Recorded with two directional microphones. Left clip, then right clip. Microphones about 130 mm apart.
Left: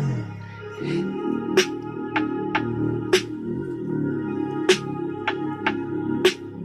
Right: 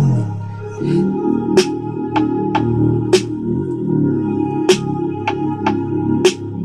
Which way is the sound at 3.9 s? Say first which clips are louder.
Right 9 dB; 25° right (ahead or behind).